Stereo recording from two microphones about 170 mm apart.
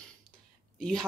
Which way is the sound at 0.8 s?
5° left (ahead or behind).